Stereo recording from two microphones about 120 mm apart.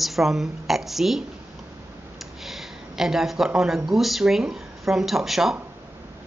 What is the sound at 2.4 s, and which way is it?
Speech, centre (ahead or behind).